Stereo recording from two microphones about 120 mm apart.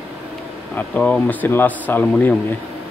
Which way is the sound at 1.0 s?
15° left (ahead or behind).